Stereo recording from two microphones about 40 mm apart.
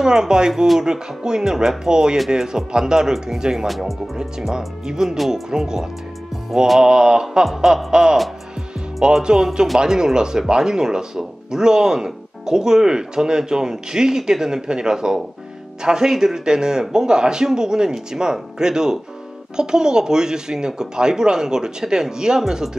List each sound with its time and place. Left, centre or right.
0.0 s speech: centre
3.6 s speech: centre
4.2 s speech: centre
6.8 s speech: centre